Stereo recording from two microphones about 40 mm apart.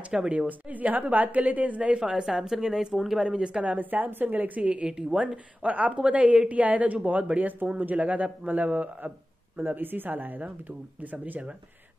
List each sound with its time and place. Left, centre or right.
0.1 s speech: centre
0.5 s a woman's voice: right
2.2 s speech: centre
3.3 s a woman's voice: right
3.6 s speech: right
4.6 s a woman's voice: right
9.6 s speech: right